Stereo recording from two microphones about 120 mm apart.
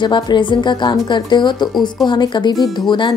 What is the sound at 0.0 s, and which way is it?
Speech, 40° left (ahead or behind).